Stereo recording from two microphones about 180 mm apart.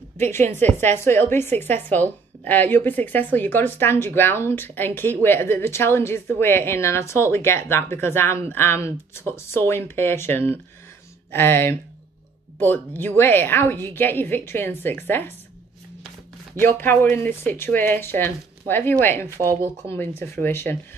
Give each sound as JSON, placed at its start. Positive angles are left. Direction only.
{"t": 0.5, "sound": "a woman's voice", "side_deg": 10}
{"t": 16.6, "sound": "a woman's voice", "side_deg": 10}
{"t": 19.5, "sound": "speech", "side_deg": -15}
{"t": 19.9, "sound": "a woman's voice", "side_deg": 15}